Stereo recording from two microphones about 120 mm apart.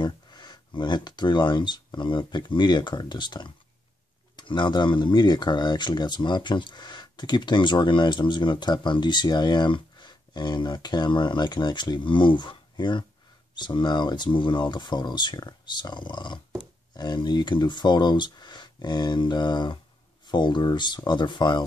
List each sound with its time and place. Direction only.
0.0 s speech: 35° left (ahead or behind)